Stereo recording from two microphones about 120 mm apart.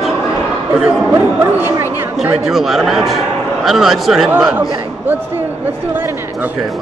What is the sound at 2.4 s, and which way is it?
Speech, centre (ahead or behind).